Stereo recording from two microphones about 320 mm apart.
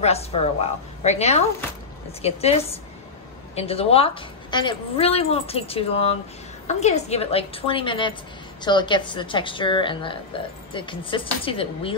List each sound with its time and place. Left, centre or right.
0.0 s a woman's voice: centre